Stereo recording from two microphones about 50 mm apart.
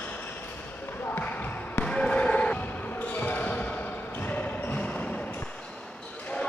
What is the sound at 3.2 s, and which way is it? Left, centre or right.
Basketball bounce, left.